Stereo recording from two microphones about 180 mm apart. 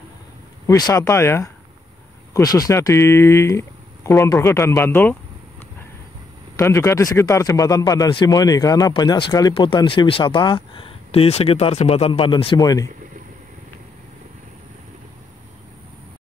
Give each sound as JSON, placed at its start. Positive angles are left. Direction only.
{"t": 0.7, "sound": "speech", "side_deg": 20}
{"t": 6.5, "sound": "speech", "side_deg": 15}